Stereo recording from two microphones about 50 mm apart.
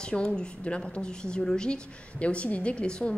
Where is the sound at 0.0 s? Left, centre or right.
Centre.